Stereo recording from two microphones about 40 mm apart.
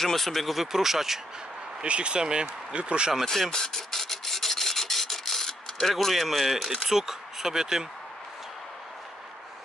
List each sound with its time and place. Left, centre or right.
0.0 s speech: centre
1.8 s speech: right
3.3 s filing: centre
5.9 s speech: centre